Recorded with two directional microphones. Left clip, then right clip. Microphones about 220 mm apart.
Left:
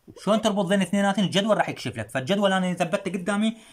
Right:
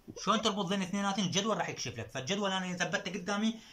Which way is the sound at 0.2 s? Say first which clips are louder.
Left 8 dB; 40° left (ahead or behind).